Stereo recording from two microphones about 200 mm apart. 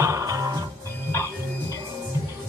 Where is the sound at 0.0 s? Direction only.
15° right (ahead or behind).